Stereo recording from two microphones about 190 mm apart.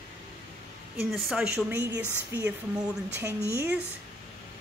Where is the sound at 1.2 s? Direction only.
5° right (ahead or behind).